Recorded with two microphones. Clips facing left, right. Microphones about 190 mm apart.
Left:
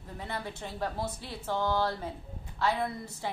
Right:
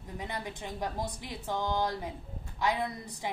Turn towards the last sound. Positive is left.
turn(degrees=-15)  # may be behind; listen again after turning